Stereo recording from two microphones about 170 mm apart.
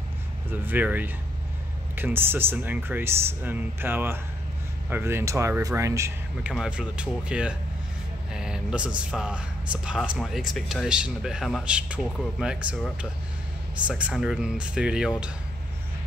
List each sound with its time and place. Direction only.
0.5 s speech: 10° right (ahead or behind)
6.5 s speech: 5° right (ahead or behind)